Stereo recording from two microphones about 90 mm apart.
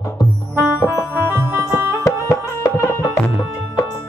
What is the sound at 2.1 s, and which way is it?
Music, 35° left (ahead or behind).